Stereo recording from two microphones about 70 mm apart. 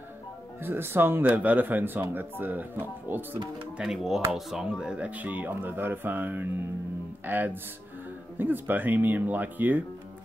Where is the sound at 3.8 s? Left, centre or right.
Centre.